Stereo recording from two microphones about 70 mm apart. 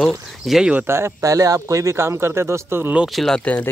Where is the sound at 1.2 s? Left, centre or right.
Right.